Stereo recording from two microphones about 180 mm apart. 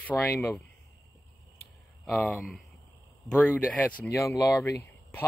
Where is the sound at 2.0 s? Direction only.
Centre (ahead or behind).